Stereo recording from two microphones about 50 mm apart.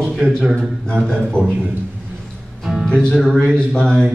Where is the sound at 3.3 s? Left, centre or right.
Centre.